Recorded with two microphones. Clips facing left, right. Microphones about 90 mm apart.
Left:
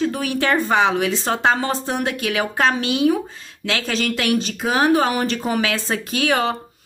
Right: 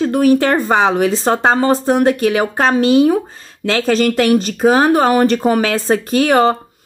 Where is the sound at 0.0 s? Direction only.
45° right (ahead or behind).